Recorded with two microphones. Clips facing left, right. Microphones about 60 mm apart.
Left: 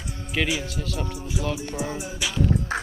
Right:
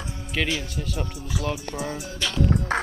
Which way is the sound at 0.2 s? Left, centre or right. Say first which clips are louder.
Left 1 dB; centre.